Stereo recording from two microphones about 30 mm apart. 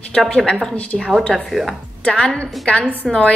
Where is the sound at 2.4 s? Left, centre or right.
Left.